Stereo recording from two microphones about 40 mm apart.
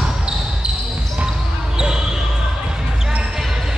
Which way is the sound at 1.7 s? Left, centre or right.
Centre.